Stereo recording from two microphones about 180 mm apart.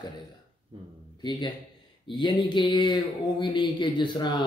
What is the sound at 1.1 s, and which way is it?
A man's voice, 25° left (ahead or behind).